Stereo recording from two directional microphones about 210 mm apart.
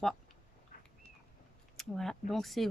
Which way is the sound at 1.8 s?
Centre (ahead or behind).